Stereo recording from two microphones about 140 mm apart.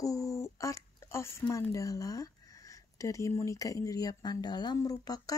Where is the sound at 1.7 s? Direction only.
25° left (ahead or behind).